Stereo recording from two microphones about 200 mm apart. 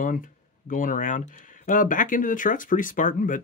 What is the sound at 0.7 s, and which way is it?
Speech, 40° left (ahead or behind).